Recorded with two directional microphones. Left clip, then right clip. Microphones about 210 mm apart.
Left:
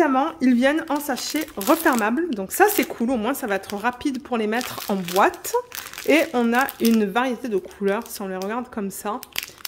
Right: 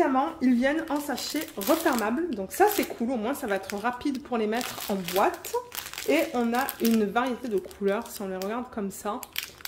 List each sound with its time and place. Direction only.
0.0 s speech: 50° left (ahead or behind)
4.8 s speech: 50° left (ahead or behind); by 9.4 s 30° left (ahead or behind)